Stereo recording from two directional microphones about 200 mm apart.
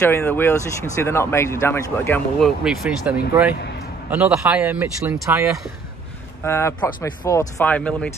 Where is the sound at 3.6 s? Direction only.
55° left (ahead or behind).